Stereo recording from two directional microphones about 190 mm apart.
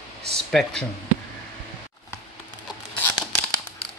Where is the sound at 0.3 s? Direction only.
5° left (ahead or behind).